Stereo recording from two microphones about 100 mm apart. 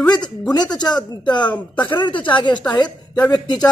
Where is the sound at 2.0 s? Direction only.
55° left (ahead or behind).